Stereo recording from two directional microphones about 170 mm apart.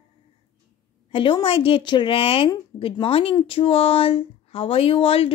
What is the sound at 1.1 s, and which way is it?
A woman's voice, 30° left (ahead or behind).